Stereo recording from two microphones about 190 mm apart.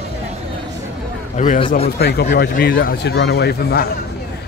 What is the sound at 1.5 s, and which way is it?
Speech, 30° left (ahead or behind).